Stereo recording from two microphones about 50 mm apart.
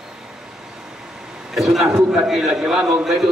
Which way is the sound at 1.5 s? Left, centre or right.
Centre.